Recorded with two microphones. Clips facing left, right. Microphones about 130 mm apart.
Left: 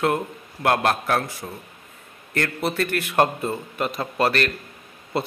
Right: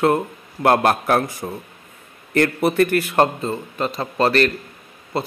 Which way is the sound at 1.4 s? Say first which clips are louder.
Right 6 dB; 25° right (ahead or behind).